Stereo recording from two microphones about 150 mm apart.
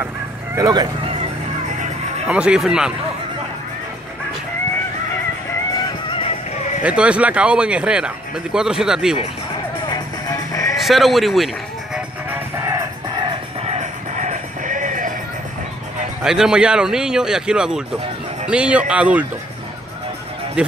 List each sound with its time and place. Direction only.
0.6 s speech: 25° right (ahead or behind)
2.2 s speech: 5° right (ahead or behind)
6.0 s music: 35° left (ahead or behind)
6.8 s speech: 10° right (ahead or behind)
9.8 s music: 25° left (ahead or behind)
10.8 s speech: centre (ahead or behind)
12.3 s music: 20° right (ahead or behind)
13.7 s music: 55° right (ahead or behind)
16.2 s speech: 5° right (ahead or behind)
20.6 s speech: 10° right (ahead or behind)